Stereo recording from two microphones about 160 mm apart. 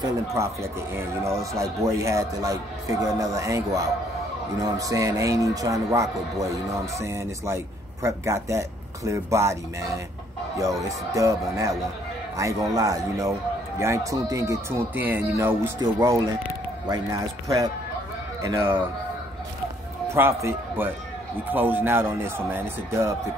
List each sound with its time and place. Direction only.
0.0 s speech: 20° right (ahead or behind)
20.1 s speech: 15° right (ahead or behind)